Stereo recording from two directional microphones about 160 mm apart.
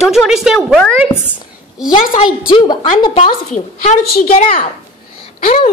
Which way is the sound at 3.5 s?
50° left (ahead or behind).